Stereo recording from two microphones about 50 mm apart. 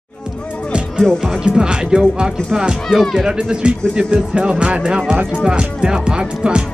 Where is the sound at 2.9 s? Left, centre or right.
Centre.